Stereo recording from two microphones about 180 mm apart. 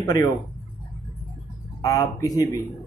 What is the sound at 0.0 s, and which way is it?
Speech, 20° left (ahead or behind).